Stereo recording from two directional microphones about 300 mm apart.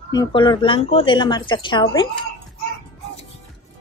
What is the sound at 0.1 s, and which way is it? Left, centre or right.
Speech, centre.